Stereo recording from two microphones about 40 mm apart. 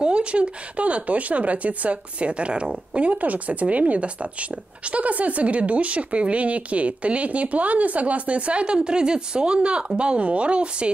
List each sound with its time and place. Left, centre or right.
0.0 s speech: right